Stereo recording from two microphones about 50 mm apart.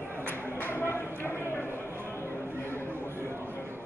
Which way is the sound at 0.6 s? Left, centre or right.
Left.